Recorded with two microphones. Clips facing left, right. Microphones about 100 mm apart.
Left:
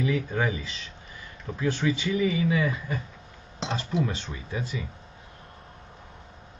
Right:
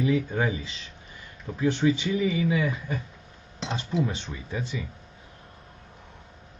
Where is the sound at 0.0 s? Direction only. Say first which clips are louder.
Right 2 dB; 25° right (ahead or behind).